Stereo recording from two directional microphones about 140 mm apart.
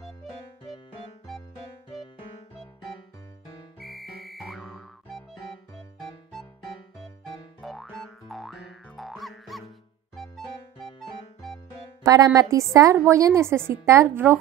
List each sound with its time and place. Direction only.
3.8 s music: centre (ahead or behind)
7.6 s boing: centre (ahead or behind)
10.1 s music: centre (ahead or behind)
12.0 s a woman's voice: 25° right (ahead or behind)